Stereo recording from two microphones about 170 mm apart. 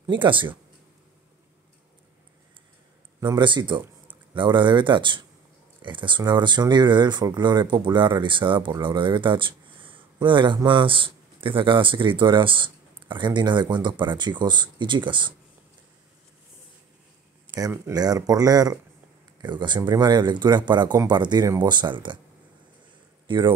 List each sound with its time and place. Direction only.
0.1 s speech: 30° right (ahead or behind)
3.2 s speech: 25° right (ahead or behind)
17.6 s speech: 20° right (ahead or behind)
23.2 s speech: 30° right (ahead or behind)